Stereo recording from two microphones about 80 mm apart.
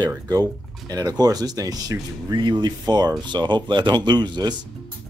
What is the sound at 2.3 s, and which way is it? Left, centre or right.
Speech, right.